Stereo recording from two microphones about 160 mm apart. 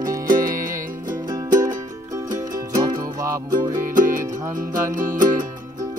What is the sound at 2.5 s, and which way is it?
Music, 20° right (ahead or behind).